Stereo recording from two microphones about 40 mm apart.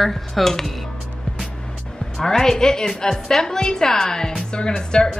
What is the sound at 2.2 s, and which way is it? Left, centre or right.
A woman's voice, centre.